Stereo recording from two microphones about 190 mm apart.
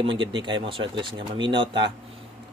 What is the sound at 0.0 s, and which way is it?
Speech, 25° right (ahead or behind).